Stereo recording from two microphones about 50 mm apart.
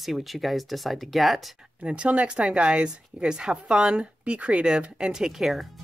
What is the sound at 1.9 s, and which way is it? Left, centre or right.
A woman's voice, right.